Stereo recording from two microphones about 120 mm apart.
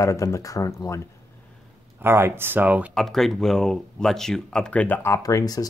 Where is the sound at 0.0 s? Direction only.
25° left (ahead or behind).